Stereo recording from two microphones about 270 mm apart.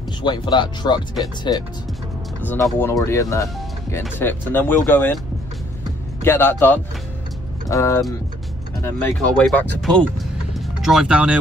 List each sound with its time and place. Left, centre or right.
0.2 s speech: centre
6.2 s speech: centre